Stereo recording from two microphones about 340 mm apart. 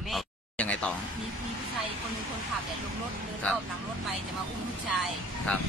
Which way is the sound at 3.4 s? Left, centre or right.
Centre.